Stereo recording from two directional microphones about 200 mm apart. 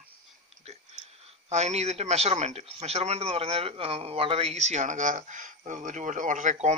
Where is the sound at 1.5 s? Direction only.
35° right (ahead or behind).